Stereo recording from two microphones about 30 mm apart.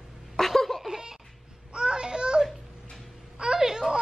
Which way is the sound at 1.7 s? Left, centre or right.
Right.